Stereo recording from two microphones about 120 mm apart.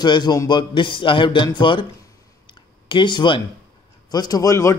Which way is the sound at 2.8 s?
40° left (ahead or behind).